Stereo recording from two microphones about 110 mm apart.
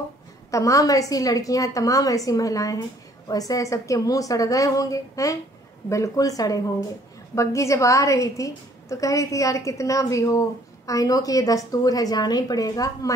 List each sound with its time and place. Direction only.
0.5 s a woman's voice: 30° left (ahead or behind)